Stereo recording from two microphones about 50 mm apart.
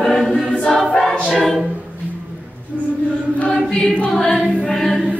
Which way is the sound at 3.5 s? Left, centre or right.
Centre.